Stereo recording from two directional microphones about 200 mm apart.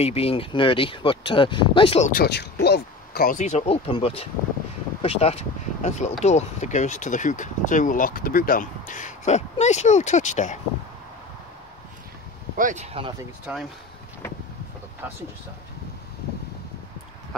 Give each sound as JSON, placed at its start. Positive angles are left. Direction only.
{"t": 0.0, "sound": "speech", "side_deg": 30}
{"t": 2.0, "sound": "speech", "side_deg": 50}
{"t": 12.5, "sound": "speech", "side_deg": -35}
{"t": 13.5, "sound": "speech", "side_deg": -5}